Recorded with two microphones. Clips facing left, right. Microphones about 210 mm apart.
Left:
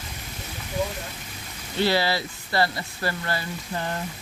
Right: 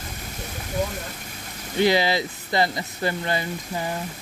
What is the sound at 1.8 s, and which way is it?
Speech, 15° right (ahead or behind).